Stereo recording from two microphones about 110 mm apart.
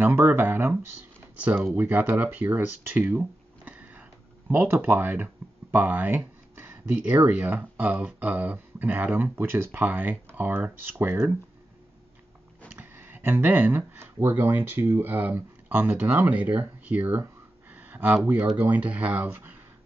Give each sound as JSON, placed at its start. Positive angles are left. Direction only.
{"t": 0.0, "sound": "speech", "side_deg": -20}
{"t": 12.7, "sound": "speech", "side_deg": -20}
{"t": 17.6, "sound": "a sound", "side_deg": -15}
{"t": 18.2, "sound": "speech", "side_deg": -15}